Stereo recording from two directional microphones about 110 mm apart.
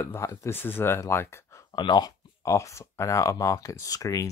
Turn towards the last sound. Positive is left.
turn(degrees=30)  # may be behind; listen again after turning